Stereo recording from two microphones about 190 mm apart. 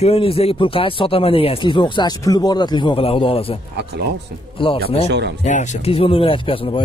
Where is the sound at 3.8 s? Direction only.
60° right (ahead or behind).